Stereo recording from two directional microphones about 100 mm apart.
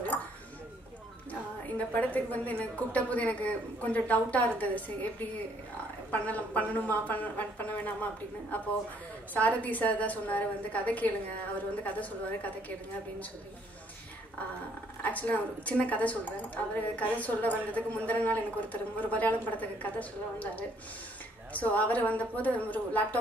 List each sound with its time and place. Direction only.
2.1 s a woman's voice: 15° left (ahead or behind)
15.0 s a woman's voice: 15° left (ahead or behind)